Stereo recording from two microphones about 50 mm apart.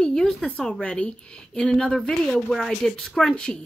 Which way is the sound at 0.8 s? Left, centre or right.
Left.